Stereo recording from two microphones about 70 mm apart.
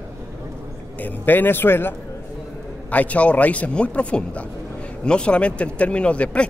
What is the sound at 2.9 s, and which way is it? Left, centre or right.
A man's voice, left.